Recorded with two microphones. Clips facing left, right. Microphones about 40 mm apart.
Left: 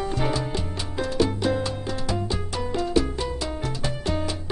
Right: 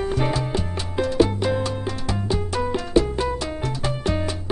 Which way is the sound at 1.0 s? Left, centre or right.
Right.